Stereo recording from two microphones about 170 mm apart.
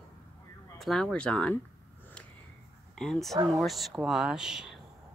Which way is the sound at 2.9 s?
5° left (ahead or behind).